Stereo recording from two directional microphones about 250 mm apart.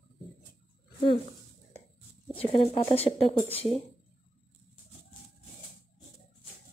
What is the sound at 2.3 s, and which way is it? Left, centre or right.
Speech, left.